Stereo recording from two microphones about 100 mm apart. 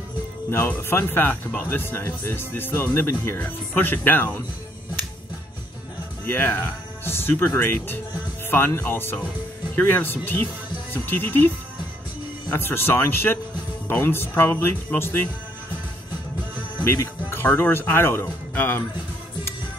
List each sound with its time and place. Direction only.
0.5 s speech: 25° left (ahead or behind)
6.2 s speech: 20° left (ahead or behind)
16.8 s speech: 25° left (ahead or behind)